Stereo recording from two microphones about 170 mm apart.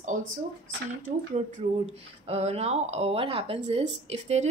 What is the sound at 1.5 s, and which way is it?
Speech, 40° right (ahead or behind).